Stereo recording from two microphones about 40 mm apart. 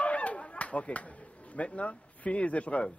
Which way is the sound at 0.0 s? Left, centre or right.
Left.